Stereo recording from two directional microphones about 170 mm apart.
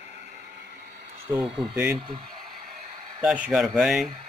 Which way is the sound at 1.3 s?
30° right (ahead or behind).